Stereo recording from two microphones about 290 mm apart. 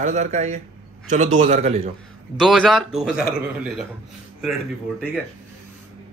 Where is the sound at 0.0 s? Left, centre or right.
Right.